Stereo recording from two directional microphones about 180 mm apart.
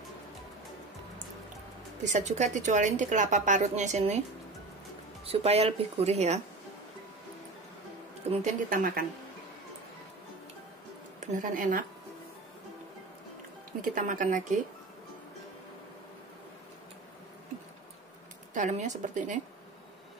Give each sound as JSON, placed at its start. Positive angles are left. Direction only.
{"t": 2.0, "sound": "a woman's voice", "side_deg": -40}
{"t": 5.2, "sound": "a woman's voice", "side_deg": -35}
{"t": 8.3, "sound": "speech", "side_deg": -40}
{"t": 11.1, "sound": "speech", "side_deg": -45}
{"t": 13.7, "sound": "speech", "side_deg": -45}
{"t": 18.5, "sound": "speech", "side_deg": -45}